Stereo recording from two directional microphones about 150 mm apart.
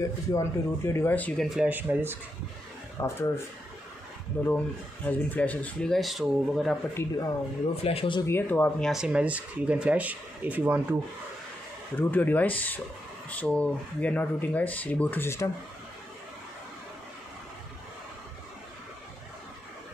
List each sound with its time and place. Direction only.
0.3 s speech: 20° left (ahead or behind); by 2.1 s 15° right (ahead or behind)
3.0 s speech: 15° left (ahead or behind)
5.0 s speech: 10° left (ahead or behind)
6.9 s speech: 15° left (ahead or behind)
7.7 s speech: 40° left (ahead or behind)
8.2 s speech: 15° left (ahead or behind)
8.9 s speech: 5° right (ahead or behind)
12.0 s speech: 10° left (ahead or behind)